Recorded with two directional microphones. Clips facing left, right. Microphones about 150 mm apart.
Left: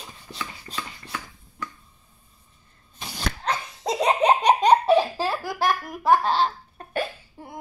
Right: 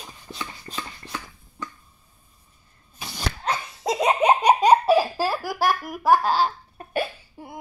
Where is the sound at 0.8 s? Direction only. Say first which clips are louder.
Even; 20° right (ahead or behind).